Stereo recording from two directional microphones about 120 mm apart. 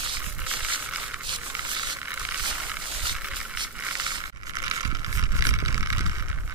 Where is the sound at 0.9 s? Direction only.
10° right (ahead or behind).